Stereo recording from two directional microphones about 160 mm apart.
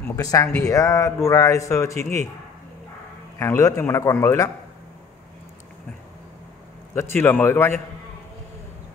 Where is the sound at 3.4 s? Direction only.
20° left (ahead or behind).